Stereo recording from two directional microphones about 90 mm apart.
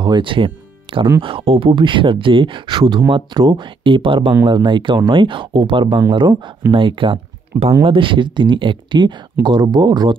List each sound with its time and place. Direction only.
0.0 s speech: 60° right (ahead or behind)
1.2 s speech: 90° right; by 4.4 s 70° right (ahead or behind)
4.5 s speech: 60° right (ahead or behind)